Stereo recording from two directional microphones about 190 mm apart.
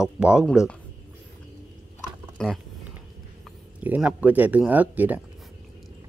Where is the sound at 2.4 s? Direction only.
5° left (ahead or behind).